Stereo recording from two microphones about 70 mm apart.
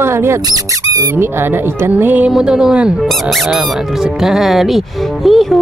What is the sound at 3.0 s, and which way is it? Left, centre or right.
Speech, centre.